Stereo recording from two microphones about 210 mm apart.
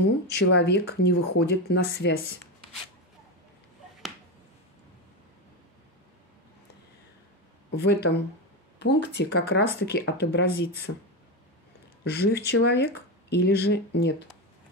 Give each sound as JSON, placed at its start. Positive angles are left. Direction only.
{"t": 0.0, "sound": "speech", "side_deg": 50}
{"t": 7.8, "sound": "speech", "side_deg": 50}
{"t": 12.0, "sound": "speech", "side_deg": 50}